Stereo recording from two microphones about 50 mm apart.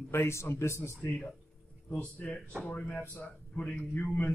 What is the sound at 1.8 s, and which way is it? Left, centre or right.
Speech, left.